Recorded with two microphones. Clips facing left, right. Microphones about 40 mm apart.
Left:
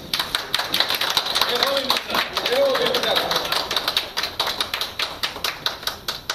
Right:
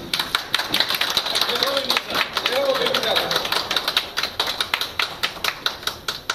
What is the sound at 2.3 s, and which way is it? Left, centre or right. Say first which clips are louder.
Run: left 1 dB; right.